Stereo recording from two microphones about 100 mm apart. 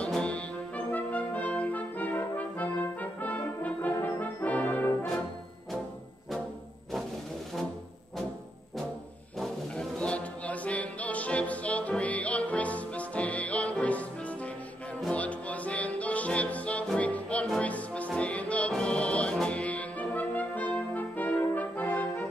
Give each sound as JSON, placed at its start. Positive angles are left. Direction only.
{"t": 0.0, "sound": "brass instrument", "side_deg": 10}
{"t": 9.4, "sound": "music", "side_deg": 10}